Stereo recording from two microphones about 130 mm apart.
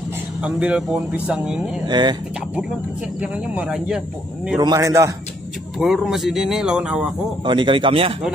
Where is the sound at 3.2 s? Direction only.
10° right (ahead or behind).